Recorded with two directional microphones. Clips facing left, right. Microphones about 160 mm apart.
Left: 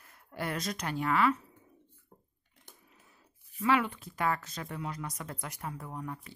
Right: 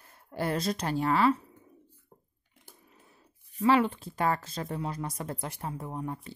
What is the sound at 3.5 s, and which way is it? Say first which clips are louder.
A woman's voice: right 4 dB; 30° right (ahead or behind).